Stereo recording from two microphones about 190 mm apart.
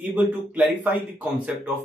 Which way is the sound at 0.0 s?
5° right (ahead or behind).